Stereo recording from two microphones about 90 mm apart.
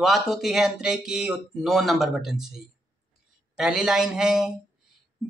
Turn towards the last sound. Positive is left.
turn(degrees=-5)  # may be behind; listen again after turning